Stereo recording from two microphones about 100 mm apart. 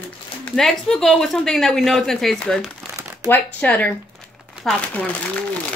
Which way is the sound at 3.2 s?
15° left (ahead or behind).